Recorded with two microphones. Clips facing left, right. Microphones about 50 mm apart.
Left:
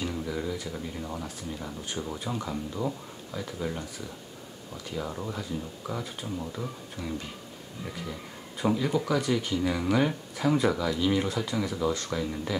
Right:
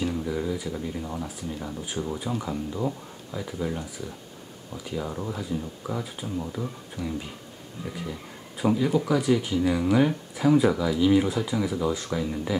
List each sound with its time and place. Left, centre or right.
0.0 s speech: centre